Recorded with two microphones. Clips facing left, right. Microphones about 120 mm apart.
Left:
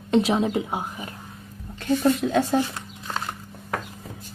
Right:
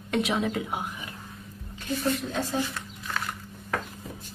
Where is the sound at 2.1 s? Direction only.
65° left (ahead or behind).